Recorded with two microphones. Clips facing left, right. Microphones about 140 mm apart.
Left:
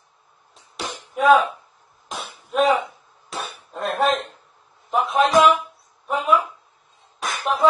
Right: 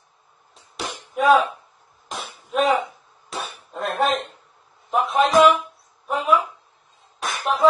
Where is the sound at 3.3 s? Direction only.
Centre (ahead or behind).